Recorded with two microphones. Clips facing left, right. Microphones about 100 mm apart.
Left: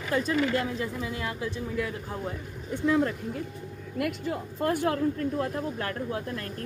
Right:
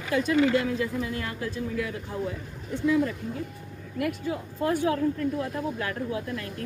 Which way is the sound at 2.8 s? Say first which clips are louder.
Right 1 dB; 55° left (ahead or behind).